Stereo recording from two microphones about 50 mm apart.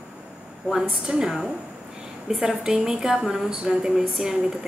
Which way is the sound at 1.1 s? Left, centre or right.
Centre.